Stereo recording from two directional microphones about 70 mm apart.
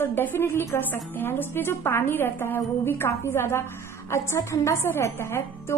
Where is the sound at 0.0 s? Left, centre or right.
Left.